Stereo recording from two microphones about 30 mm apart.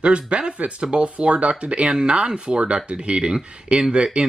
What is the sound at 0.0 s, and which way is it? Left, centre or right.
Speech, right.